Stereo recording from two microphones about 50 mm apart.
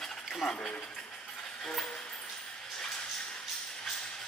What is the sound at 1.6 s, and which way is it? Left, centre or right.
Music, centre.